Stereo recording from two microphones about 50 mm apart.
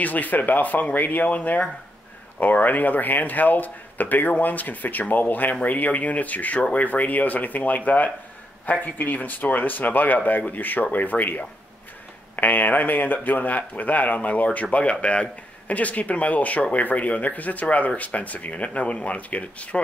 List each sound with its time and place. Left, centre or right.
0.0 s speech: left